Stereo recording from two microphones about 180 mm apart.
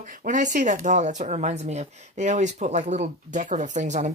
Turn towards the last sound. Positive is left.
turn(degrees=-40)  # may be behind; listen again after turning